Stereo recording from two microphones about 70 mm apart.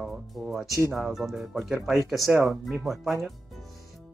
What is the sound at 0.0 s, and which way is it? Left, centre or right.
Speech, centre.